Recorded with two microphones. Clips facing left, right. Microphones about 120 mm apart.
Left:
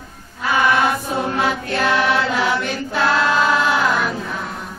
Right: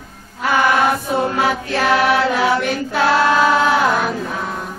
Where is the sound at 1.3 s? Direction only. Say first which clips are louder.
Right 2 dB; 45° right (ahead or behind).